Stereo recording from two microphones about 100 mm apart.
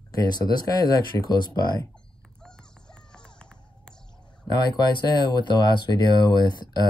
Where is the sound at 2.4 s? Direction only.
10° left (ahead or behind).